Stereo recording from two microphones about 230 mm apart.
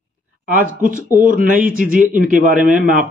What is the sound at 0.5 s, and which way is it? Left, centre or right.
Speech, right.